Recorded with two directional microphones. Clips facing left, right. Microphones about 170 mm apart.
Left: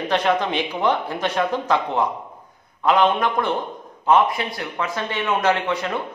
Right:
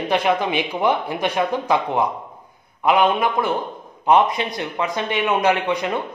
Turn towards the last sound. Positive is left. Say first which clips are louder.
# right 2 dB
turn(degrees=-15)  # may be behind; listen again after turning